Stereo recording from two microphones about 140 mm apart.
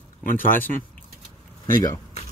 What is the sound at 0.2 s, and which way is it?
Speech, 80° left.